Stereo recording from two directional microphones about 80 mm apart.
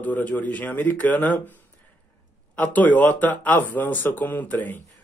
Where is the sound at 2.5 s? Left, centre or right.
Centre.